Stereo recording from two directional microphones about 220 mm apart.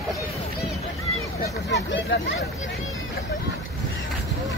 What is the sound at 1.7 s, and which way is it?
Speech, 55° left (ahead or behind).